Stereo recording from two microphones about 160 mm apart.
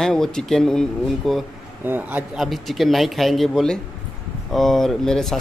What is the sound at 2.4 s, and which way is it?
Speech, centre (ahead or behind).